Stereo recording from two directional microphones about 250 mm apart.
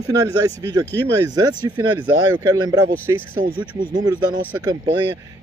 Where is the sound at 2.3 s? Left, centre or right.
Centre.